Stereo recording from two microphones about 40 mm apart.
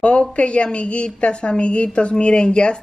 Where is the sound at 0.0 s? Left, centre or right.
Left.